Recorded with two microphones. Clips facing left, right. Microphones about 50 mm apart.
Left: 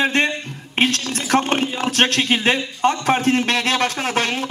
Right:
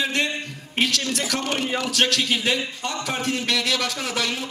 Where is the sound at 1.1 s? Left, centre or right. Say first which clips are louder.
Left 6 dB; left.